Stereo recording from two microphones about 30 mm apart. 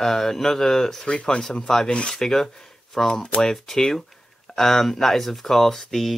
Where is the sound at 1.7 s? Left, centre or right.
Left.